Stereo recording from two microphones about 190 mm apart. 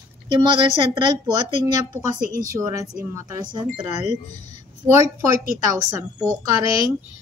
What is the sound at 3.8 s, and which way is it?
Speech, 35° left (ahead or behind).